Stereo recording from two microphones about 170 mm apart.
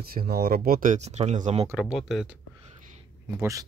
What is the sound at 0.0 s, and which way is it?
Speech, 60° right (ahead or behind).